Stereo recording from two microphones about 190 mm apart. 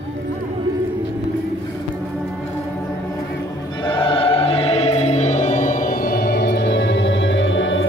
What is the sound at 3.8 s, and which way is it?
Music, 25° left (ahead or behind).